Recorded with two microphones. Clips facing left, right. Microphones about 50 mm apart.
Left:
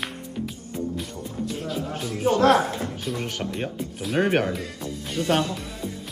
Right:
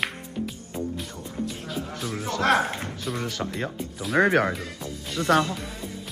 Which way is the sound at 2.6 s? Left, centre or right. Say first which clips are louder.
Left 2 dB; right.